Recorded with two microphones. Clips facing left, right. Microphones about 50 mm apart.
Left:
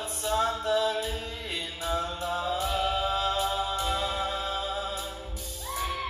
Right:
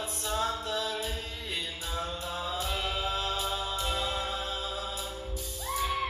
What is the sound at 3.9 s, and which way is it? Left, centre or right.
Music, centre.